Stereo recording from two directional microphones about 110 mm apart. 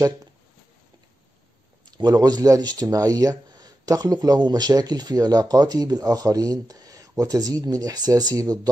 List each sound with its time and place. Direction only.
1.9 s speech: 40° right (ahead or behind)